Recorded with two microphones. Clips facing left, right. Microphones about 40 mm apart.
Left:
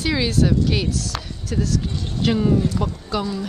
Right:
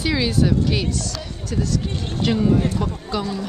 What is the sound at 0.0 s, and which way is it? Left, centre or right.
Speech, centre.